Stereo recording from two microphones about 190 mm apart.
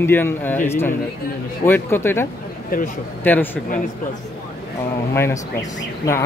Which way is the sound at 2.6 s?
45° left (ahead or behind).